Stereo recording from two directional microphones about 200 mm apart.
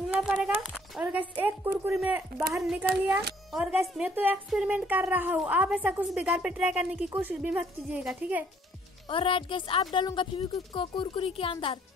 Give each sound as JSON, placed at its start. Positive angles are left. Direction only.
{"t": 0.0, "sound": "a woman's voice", "side_deg": -5}
{"t": 9.1, "sound": "a woman's voice", "side_deg": 25}